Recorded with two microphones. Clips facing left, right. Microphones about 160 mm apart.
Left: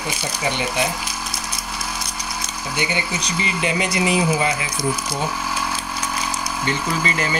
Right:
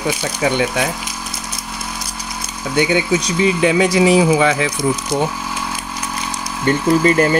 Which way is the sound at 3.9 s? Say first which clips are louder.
Right 7 dB; 90° right.